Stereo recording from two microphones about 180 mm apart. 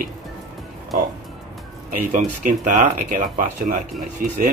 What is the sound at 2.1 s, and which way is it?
Speech, 45° right (ahead or behind).